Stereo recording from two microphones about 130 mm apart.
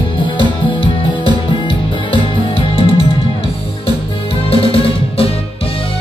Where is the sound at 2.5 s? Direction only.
50° left (ahead or behind).